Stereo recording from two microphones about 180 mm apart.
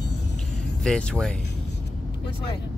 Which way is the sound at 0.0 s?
75° left (ahead or behind).